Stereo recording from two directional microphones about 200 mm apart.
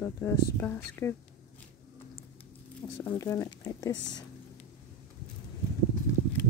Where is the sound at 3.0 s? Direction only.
20° left (ahead or behind).